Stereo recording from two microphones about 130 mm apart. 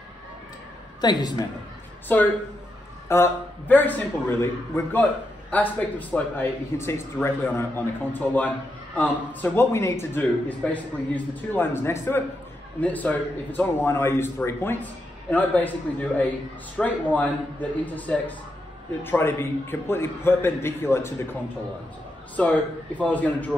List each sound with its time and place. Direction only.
1.0 s a woman's voice: 30° left (ahead or behind)
2.1 s a man's voice: 15° left (ahead or behind)
22.4 s a man's voice: 10° left (ahead or behind)